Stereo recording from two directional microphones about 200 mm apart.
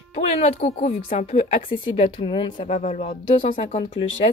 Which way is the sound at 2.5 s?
35° left (ahead or behind).